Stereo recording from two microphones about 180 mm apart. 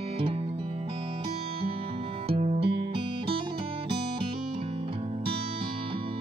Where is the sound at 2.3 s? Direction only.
35° right (ahead or behind).